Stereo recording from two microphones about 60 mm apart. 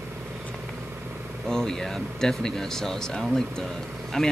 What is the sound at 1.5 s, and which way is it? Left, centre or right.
Speech, centre.